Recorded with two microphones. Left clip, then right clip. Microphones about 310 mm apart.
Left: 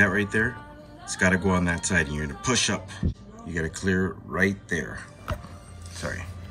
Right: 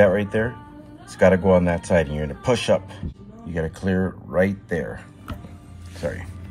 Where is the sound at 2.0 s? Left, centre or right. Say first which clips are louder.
Right 4 dB; right.